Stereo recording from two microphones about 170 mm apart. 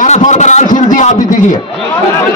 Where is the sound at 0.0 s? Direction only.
45° left (ahead or behind).